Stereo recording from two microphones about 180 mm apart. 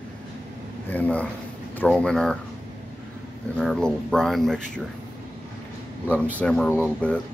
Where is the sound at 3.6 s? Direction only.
5° left (ahead or behind).